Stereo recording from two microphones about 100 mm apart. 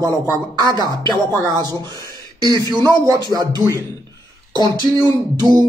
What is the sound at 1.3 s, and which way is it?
Speech, 25° left (ahead or behind).